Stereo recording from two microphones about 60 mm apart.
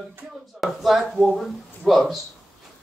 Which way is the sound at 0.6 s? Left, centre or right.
Centre.